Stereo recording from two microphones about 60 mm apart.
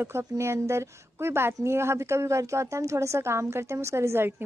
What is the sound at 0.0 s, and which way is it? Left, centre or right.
A woman's voice, right.